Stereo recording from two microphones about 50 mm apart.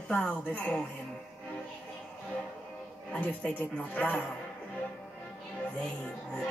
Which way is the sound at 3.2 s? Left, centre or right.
Left.